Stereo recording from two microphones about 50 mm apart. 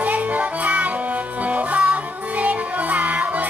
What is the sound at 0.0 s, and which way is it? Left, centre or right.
Music, right.